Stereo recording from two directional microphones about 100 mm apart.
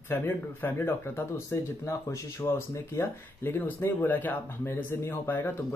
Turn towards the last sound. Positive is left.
turn(degrees=20)  # may be behind; listen again after turning